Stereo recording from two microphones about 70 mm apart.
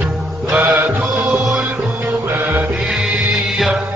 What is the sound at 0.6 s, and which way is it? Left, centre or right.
Music, right.